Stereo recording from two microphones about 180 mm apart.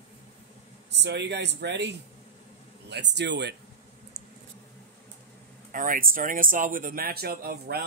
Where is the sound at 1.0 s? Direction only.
70° right (ahead or behind).